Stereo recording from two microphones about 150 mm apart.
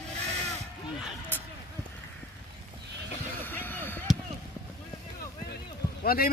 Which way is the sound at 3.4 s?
15° left (ahead or behind).